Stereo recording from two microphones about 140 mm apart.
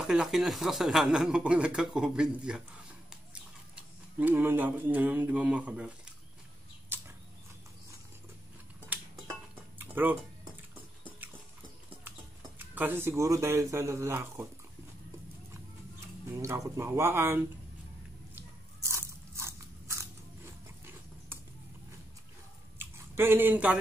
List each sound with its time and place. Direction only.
0.0 s speech: 5° right (ahead or behind)
4.2 s speech: 15° right (ahead or behind)
6.9 s a sound: 15° right (ahead or behind)
8.9 s a sound: 10° right (ahead or behind)
9.8 s tick-tock: 15° right (ahead or behind)
12.5 s speech: 10° right (ahead or behind)
16.3 s speech: 20° right (ahead or behind)
18.3 s biting: 20° right (ahead or behind)
22.8 s a sound: 15° right (ahead or behind)